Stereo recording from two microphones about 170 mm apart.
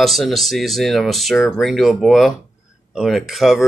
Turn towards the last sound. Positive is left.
turn(degrees=0)  # may be behind; listen again after turning